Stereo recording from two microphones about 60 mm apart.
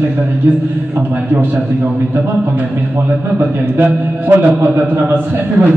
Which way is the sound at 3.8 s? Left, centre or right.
Right.